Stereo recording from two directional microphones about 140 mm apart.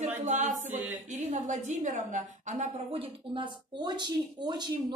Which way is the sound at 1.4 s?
60° right (ahead or behind).